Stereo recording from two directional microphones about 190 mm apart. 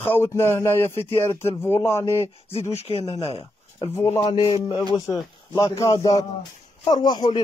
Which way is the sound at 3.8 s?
20° left (ahead or behind).